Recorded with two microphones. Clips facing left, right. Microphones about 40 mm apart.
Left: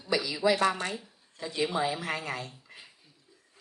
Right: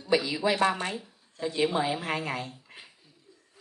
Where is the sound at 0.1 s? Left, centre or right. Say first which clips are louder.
Right 1 dB; right.